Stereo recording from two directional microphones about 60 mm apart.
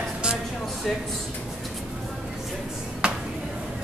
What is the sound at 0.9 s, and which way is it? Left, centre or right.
Speech, centre.